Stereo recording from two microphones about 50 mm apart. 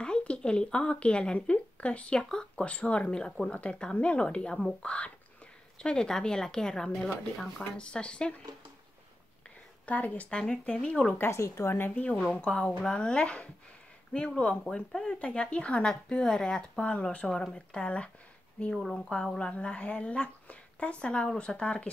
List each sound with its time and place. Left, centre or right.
0.0 s a woman's voice: left
9.8 s speech: left
11.1 s speech: left
11.7 s a woman's voice: left
12.4 s speech: centre
14.9 s a woman's voice: centre
15.1 s speech: left
17.3 s speech: centre